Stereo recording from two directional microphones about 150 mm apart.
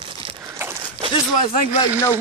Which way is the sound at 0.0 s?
35° right (ahead or behind).